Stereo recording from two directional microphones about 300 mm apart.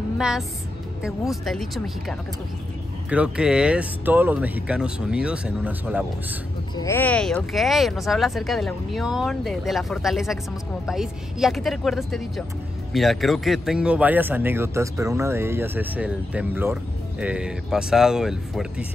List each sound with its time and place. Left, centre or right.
0.2 s speech: centre
6.8 s speech: centre